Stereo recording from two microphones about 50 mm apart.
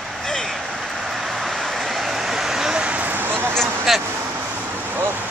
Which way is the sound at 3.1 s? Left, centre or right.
Right.